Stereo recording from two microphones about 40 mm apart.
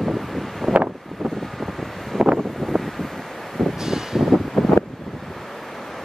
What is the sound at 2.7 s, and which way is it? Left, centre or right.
Wind noise, centre.